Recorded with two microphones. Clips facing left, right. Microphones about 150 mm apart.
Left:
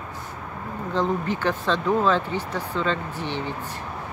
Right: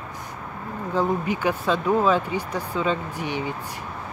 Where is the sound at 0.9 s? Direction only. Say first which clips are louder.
Right 1 dB; 10° right (ahead or behind).